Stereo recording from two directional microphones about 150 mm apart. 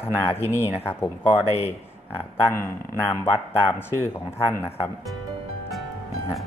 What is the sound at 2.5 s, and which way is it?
Speech, 15° left (ahead or behind).